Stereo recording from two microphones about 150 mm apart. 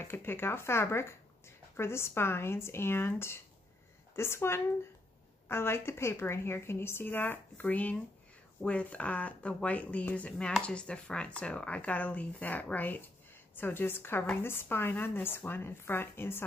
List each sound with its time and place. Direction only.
0.0 s speech: 15° left (ahead or behind)